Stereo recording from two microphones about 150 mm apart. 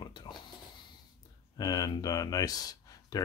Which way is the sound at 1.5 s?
25° left (ahead or behind).